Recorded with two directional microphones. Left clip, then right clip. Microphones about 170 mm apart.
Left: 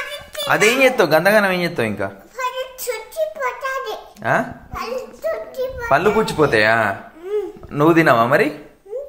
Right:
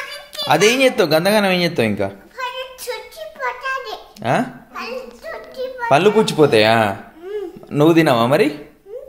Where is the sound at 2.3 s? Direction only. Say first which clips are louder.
Left 2 dB; centre (ahead or behind).